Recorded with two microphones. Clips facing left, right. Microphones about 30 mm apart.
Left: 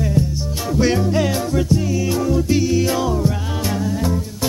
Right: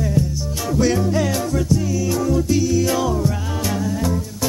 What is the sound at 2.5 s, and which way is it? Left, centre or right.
Music, left.